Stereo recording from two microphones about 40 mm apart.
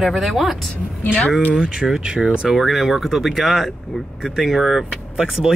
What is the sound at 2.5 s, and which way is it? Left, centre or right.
Speech, centre.